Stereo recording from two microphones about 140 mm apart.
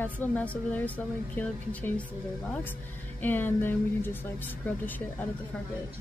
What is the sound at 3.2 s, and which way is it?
A woman's voice, 15° left (ahead or behind).